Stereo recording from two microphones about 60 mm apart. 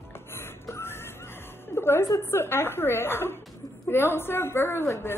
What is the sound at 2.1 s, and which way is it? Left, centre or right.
A woman's voice, left.